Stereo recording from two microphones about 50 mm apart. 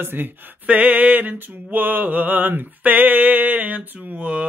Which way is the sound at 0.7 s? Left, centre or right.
Right.